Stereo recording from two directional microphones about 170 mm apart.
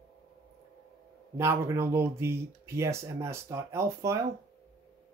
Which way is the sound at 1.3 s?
15° right (ahead or behind).